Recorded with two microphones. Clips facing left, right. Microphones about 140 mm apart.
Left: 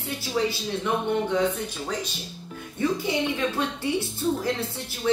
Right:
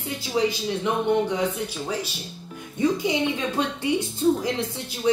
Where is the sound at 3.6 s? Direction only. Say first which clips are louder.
Right 2 dB; 15° right (ahead or behind).